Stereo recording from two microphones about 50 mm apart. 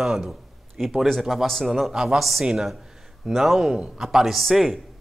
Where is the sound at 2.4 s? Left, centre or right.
Centre.